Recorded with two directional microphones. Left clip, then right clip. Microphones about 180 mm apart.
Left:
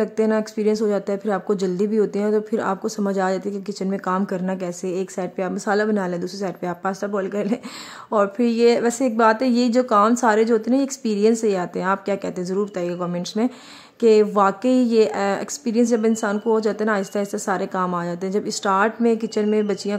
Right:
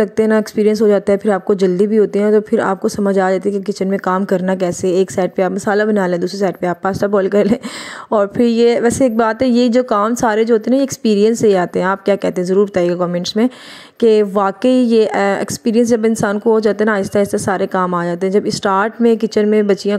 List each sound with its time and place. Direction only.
0.0 s speech: 30° right (ahead or behind)